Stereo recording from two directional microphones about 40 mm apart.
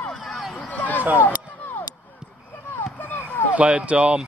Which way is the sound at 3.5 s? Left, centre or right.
Right.